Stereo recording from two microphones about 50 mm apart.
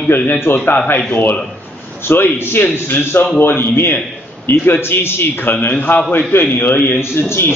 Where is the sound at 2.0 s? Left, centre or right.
Left.